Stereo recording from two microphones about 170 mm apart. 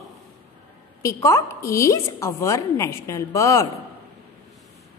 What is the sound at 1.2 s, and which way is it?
A woman's voice, 15° left (ahead or behind).